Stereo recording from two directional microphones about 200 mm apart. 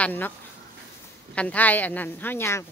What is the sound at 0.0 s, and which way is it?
Speech, 10° left (ahead or behind).